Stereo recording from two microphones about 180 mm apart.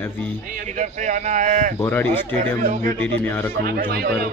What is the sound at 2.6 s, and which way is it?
Speech, 45° right (ahead or behind).